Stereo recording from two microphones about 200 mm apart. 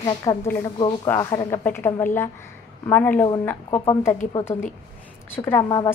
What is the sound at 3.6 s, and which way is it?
Speech, 25° left (ahead or behind).